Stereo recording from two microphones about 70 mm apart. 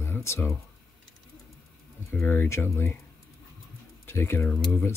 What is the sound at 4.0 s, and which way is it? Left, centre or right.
Speech, left.